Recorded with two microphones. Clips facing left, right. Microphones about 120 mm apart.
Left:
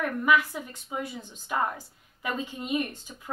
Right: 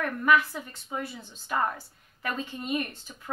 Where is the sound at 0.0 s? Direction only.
15° left (ahead or behind).